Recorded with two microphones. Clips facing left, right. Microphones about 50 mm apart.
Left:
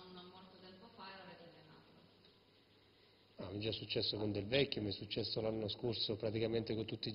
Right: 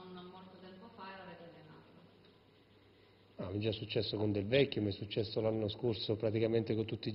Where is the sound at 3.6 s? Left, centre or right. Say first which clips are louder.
Right 4 dB; centre.